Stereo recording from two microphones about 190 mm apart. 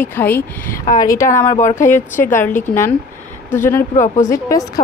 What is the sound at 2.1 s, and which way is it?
Speech, 45° left (ahead or behind).